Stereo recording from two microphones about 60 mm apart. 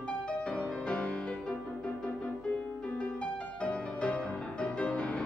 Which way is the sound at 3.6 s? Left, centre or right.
Centre.